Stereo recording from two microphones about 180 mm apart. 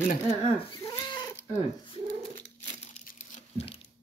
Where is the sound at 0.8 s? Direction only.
25° left (ahead or behind).